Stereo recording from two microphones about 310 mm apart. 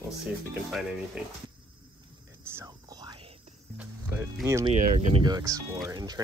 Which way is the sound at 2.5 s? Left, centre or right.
Centre.